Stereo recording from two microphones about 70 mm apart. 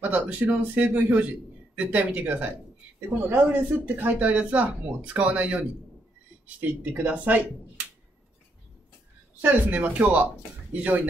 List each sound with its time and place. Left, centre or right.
0.0 s speech: right
9.7 s speech: right